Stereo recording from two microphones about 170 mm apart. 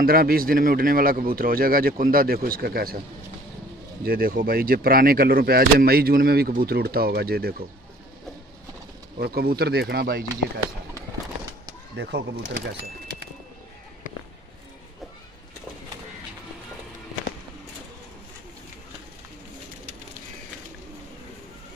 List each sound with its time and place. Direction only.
0.0 s speech: 60° right (ahead or behind)
4.0 s speech: 60° right (ahead or behind)
9.2 s speech: 65° right (ahead or behind)
12.0 s speech: 75° right (ahead or behind)